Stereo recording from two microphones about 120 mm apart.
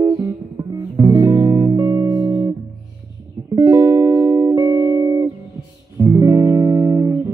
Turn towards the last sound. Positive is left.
turn(degrees=-30)  # may be behind; listen again after turning